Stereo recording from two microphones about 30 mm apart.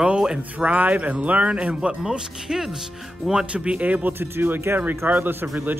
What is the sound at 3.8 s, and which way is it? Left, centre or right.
Speech, right.